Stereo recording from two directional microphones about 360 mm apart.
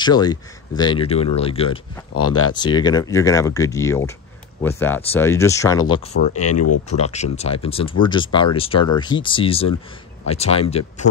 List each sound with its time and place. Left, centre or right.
0.0 s speech: centre
2.2 s speech: left
2.5 s speech: centre
6.3 s speech: left
7.0 s speech: centre